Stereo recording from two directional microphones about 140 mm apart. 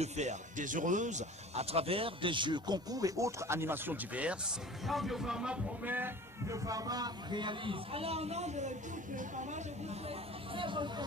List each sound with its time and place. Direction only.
0.0 s a man's voice: 55° right (ahead or behind); by 11.1 s 35° right (ahead or behind)